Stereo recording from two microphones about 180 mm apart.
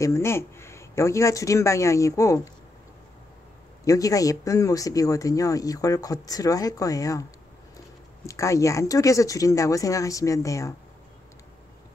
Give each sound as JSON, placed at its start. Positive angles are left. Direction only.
{"t": 0.0, "sound": "speech", "side_deg": 15}
{"t": 3.8, "sound": "speech", "side_deg": 20}
{"t": 8.3, "sound": "speech", "side_deg": 15}